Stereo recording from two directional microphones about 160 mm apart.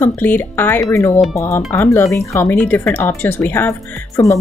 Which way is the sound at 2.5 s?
5° left (ahead or behind).